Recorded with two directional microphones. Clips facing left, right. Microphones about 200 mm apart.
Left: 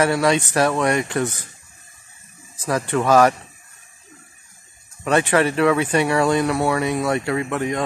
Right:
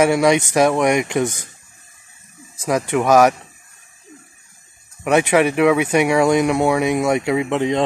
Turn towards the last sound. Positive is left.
turn(degrees=-20)  # may be behind; listen again after turning